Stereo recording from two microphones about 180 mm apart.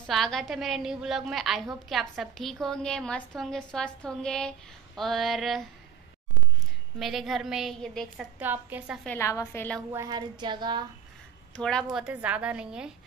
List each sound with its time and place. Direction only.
0.0 s a woman's voice: centre (ahead or behind)
7.0 s a woman's voice: centre (ahead or behind)
8.4 s a woman's voice: 10° right (ahead or behind)
9.0 s a woman's voice: 10° left (ahead or behind)
9.9 s speech: 20° right (ahead or behind)
11.5 s a woman's voice: 5° left (ahead or behind)